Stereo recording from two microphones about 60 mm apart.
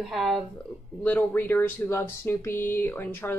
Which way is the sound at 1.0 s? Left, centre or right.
Left.